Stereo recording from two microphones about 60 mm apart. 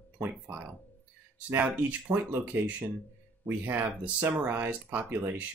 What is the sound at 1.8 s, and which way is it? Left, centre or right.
Speech, right.